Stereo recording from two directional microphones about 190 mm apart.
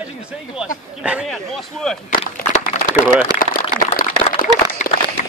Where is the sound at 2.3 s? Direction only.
50° left (ahead or behind).